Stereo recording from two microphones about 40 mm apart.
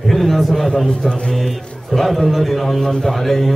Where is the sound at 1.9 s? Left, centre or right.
Centre.